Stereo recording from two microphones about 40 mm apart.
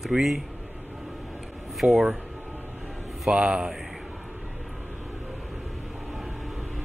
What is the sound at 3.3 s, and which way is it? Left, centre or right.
Speech, right.